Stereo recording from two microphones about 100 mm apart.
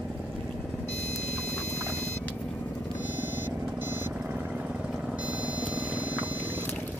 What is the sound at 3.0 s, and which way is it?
Vehicle, 15° right (ahead or behind).